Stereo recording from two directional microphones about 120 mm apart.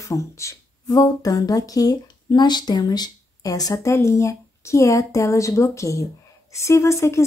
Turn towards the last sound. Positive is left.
turn(degrees=25)  # may be behind; listen again after turning